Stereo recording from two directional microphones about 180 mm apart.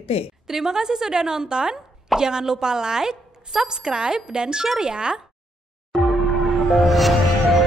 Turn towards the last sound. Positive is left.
turn(degrees=0)  # may be behind; listen again after turning